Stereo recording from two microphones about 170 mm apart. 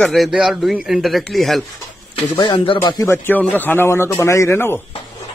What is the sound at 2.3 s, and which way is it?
A man's voice, 30° left (ahead or behind).